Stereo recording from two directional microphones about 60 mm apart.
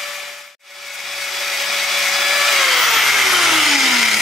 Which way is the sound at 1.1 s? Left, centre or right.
Centre.